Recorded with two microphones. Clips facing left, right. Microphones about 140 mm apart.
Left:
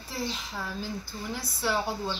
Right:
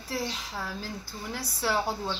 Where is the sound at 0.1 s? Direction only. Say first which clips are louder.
Right 1 dB; 5° right (ahead or behind).